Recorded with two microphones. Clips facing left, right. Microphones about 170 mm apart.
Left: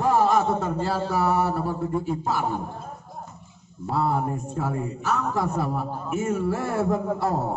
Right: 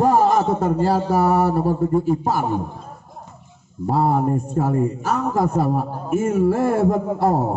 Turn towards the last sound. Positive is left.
turn(degrees=-45)  # may be behind; listen again after turning